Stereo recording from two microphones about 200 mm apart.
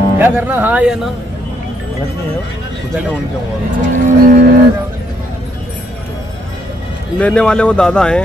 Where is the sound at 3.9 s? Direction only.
40° right (ahead or behind).